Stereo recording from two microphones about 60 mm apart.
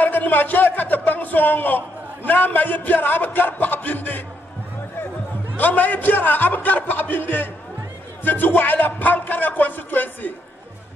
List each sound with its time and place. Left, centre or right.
0.0 s speech: left
5.6 s a man's voice: left